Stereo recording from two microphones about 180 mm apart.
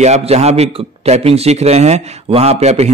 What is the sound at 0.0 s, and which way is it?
A man's voice, 35° right (ahead or behind).